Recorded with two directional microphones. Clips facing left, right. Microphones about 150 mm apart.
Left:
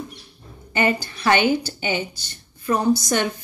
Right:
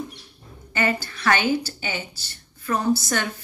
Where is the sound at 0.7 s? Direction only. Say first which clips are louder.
Left 3 dB; 15° left (ahead or behind).